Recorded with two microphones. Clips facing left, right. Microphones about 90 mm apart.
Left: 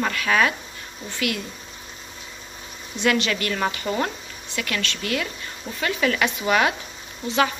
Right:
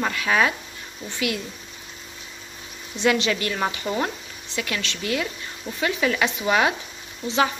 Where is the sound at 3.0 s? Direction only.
20° right (ahead or behind).